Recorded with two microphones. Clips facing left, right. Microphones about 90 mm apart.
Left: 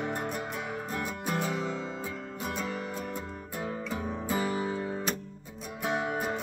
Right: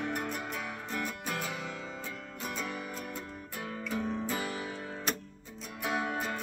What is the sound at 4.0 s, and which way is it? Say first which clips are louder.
Music: right 1 dB; 10° left (ahead or behind).